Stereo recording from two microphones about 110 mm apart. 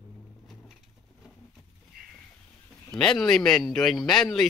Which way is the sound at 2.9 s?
5° left (ahead or behind).